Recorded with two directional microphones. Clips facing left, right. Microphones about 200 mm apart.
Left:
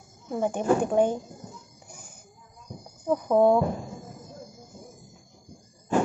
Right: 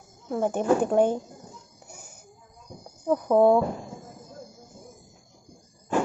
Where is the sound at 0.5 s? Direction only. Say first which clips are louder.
Right 1 dB; 5° right (ahead or behind).